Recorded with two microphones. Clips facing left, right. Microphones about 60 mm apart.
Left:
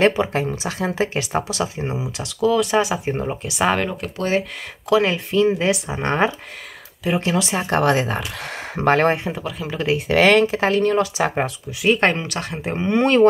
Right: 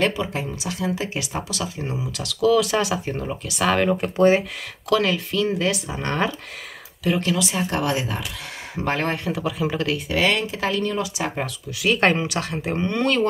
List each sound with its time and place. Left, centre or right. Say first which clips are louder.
0.0 s speech: left 5 dB; left
2.5 s speech: left 2 dB; centre
2.9 s speech: left 3 dB; left
5.0 s speech: left 4 dB; left
9.3 s speech: right 3 dB; centre
9.9 s speech: left 11 dB; left
11.7 s speech: left 1 dB; centre
12.9 s speech: left 6 dB; left